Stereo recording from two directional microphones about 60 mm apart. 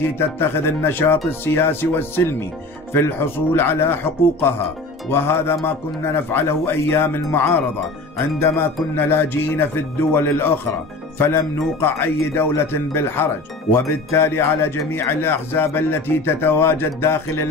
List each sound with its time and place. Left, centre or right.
0.0 s speech: left